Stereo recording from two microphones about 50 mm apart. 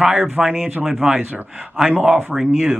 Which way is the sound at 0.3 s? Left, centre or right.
Centre.